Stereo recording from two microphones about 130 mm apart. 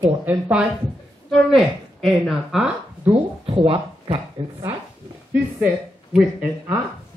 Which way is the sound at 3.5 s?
40° right (ahead or behind).